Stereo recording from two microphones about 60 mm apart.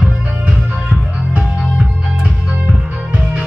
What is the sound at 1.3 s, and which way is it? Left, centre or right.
Music, right.